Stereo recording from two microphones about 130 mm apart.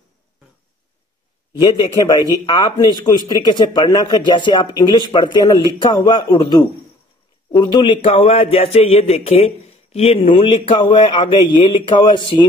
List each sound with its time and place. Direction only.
1.6 s a man's voice: 35° left (ahead or behind)